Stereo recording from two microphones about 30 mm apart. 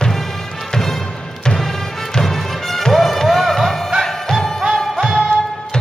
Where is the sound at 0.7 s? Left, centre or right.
Centre.